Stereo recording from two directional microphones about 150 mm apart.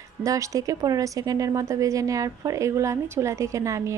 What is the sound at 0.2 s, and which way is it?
A woman's voice, 20° right (ahead or behind).